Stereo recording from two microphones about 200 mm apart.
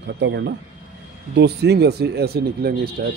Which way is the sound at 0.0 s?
60° right (ahead or behind).